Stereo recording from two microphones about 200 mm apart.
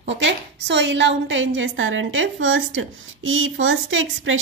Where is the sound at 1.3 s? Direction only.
70° right (ahead or behind).